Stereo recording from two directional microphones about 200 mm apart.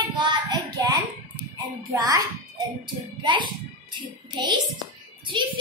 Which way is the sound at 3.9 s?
20° right (ahead or behind).